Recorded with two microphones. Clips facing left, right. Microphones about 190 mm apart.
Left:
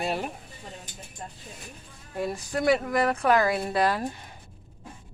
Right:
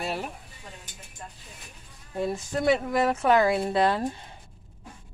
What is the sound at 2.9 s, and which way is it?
Speech, 5° right (ahead or behind).